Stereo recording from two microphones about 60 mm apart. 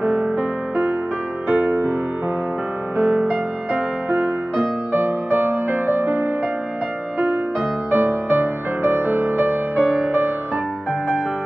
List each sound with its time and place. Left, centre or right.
0.0 s music: centre
0.4 s music: right
3.0 s music: centre; by 6.2 s right
7.9 s music: right